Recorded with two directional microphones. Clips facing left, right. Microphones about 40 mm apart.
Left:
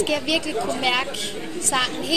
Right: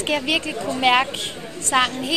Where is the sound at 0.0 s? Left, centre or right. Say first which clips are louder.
Even; right.